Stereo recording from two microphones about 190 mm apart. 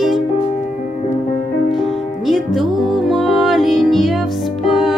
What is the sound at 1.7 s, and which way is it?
Music, centre (ahead or behind).